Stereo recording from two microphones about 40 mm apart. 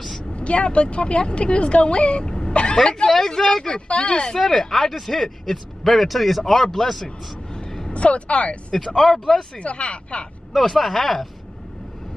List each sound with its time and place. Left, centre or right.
0.2 s speech: left
2.5 s vehicle: left
2.8 s speech: centre
3.6 s speech: left
4.4 s speech: centre
7.9 s speech: left
8.7 s speech: centre
9.6 s speech: left
10.5 s speech: centre